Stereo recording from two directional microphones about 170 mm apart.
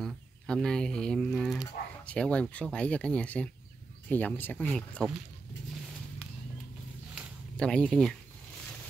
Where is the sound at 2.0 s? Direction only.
5° left (ahead or behind).